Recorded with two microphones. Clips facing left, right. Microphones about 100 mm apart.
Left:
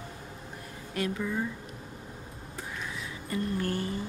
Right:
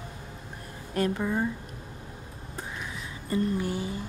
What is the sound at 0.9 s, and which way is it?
Speech, 40° right (ahead or behind).